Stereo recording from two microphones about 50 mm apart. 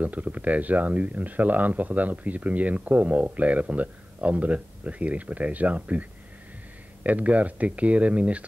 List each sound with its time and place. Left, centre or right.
0.0 s speech: right